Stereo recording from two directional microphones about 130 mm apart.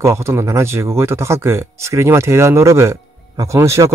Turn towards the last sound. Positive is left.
turn(degrees=-20)  # may be behind; listen again after turning